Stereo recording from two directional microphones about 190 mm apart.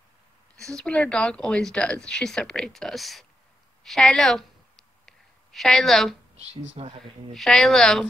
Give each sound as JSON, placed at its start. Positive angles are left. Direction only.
{"t": 0.6, "sound": "speech", "side_deg": 5}
{"t": 5.0, "sound": "a sound", "side_deg": 0}
{"t": 6.8, "sound": "speech", "side_deg": -30}
{"t": 7.3, "sound": "speech", "side_deg": 0}